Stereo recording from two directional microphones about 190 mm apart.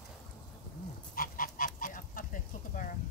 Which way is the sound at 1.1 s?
50° left (ahead or behind).